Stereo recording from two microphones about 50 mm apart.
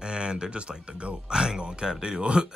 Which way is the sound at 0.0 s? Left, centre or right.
Centre.